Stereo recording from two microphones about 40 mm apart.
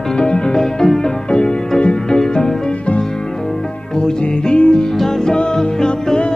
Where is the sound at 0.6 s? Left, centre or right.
Centre; by 2.1 s left.